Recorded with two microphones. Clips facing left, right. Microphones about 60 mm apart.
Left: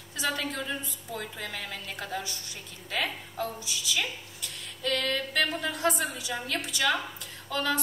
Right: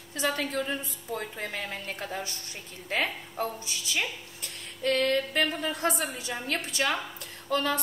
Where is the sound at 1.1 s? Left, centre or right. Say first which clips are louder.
Right 3 dB; right.